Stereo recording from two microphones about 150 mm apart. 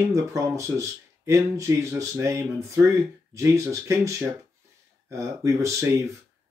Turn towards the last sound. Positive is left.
turn(degrees=-20)  # may be behind; listen again after turning